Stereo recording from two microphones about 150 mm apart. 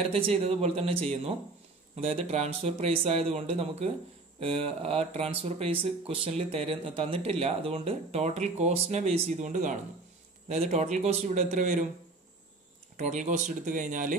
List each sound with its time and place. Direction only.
0.1 s speech: 40° right (ahead or behind)
9.4 s speech: 55° right (ahead or behind)
12.9 s speech: 55° right (ahead or behind)